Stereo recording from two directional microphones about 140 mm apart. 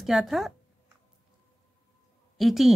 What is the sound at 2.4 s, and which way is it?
Speech, centre (ahead or behind).